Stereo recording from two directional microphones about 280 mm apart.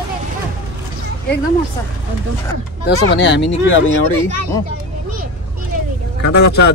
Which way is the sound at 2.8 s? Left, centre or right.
Left.